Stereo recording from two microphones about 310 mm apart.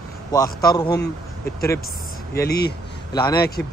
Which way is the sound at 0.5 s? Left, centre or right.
Centre.